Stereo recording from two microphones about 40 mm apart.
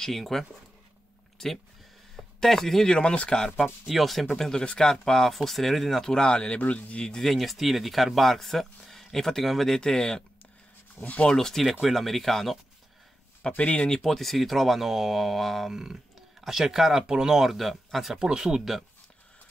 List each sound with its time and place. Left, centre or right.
0.0 s a man's voice: centre
3.0 s speech: left
3.5 s speech: centre
4.4 s speech: centre
6.6 s a man's voice: left
7.2 s speech: centre
9.8 s speech: centre
11.0 s speech: left
11.3 s speech: centre
13.6 s speech: left
14.0 s speech: centre
15.7 s speech: centre
17.3 s speech: centre